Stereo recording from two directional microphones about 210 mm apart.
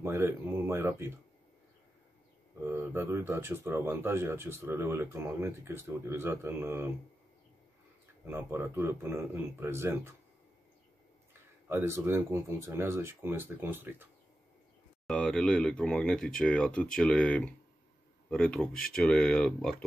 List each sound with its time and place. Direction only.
0.0 s speech: 10° right (ahead or behind)
2.6 s speech: 10° right (ahead or behind)
8.3 s speech: 10° right (ahead or behind)
11.7 s speech: 10° right (ahead or behind)
15.0 s speech: 5° left (ahead or behind)